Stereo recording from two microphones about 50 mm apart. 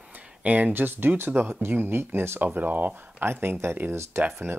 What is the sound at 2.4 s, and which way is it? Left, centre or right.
Speech, right.